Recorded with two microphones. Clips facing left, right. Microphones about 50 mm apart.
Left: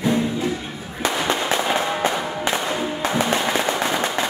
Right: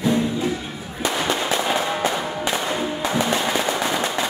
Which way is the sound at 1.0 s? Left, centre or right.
Left.